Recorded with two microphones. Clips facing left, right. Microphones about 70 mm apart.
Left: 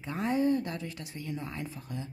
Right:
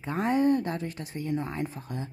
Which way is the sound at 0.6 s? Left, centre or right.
Right.